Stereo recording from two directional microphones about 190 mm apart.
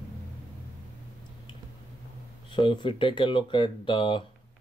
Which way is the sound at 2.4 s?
25° left (ahead or behind).